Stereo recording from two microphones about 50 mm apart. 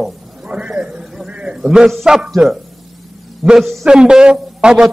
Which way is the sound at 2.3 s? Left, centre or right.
Centre.